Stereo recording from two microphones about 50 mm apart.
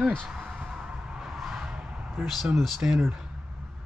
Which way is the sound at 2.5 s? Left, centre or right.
Centre.